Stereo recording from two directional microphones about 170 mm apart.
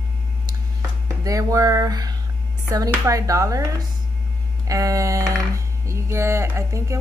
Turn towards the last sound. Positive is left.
turn(degrees=-15)  # may be behind; listen again after turning